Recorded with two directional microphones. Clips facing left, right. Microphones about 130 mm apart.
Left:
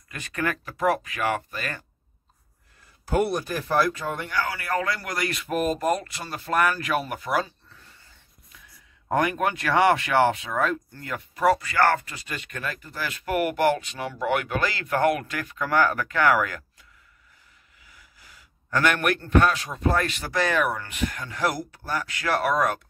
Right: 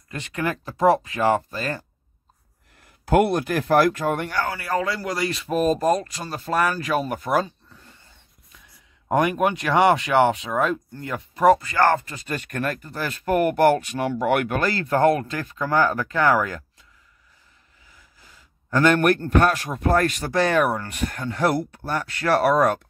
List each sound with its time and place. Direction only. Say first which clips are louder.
0.1 s speech: right 2 dB; 20° right (ahead or behind)
3.1 s speech: right 5 dB; 75° right (ahead or behind)
4.6 s a man's voice: right 2 dB; 30° right (ahead or behind)
7.3 s speech: right 4 dB; 20° right (ahead or behind)
9.1 s speech: right 3 dB; 20° right (ahead or behind)
12.3 s speech: right 7 dB; 45° right (ahead or behind)
12.8 s a man's voice: right 5 dB; 40° right (ahead or behind)
18.7 s a man's voice: right 5 dB; 30° right (ahead or behind)